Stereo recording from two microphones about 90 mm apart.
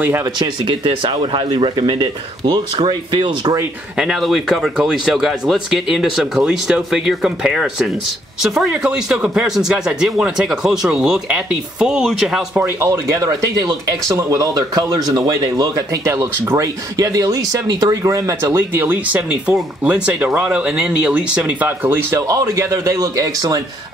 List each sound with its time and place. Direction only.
0.4 s speech: 65° right (ahead or behind)
4.0 s speech: centre (ahead or behind)
12.6 s speech: 35° right (ahead or behind)